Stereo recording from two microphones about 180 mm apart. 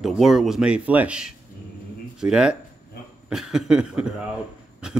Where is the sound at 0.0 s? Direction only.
Centre (ahead or behind).